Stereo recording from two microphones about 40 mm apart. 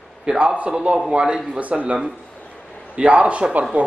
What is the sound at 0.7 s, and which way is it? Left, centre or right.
Speech, centre.